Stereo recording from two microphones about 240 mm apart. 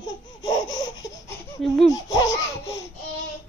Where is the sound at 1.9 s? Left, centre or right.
Centre.